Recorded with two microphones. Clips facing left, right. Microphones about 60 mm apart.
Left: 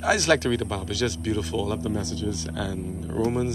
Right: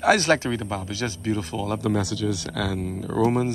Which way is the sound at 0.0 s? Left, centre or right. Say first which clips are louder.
Right 4 dB; right.